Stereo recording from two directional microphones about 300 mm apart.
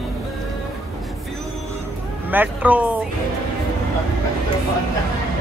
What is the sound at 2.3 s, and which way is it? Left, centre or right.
Speech, centre.